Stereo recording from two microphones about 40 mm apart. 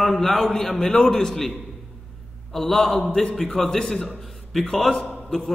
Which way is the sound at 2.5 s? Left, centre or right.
Centre.